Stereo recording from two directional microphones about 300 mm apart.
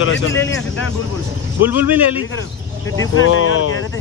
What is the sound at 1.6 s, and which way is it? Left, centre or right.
Speech, centre.